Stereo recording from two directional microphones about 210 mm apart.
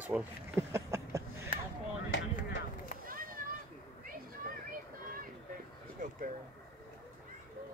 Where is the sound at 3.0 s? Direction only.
40° right (ahead or behind).